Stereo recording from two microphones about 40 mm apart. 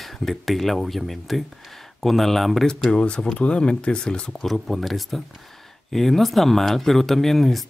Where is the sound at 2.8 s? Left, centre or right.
Left.